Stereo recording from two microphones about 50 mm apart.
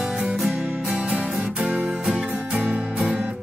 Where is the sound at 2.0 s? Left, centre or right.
Centre.